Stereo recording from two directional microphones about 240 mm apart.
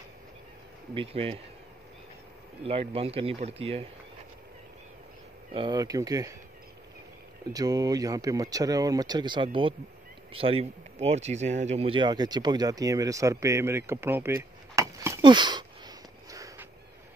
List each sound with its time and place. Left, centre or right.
0.9 s speech: right
2.6 s speech: right
5.5 s speech: centre
7.5 s speech: centre